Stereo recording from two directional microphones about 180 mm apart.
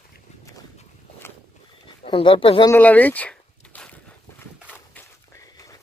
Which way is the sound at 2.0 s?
30° left (ahead or behind).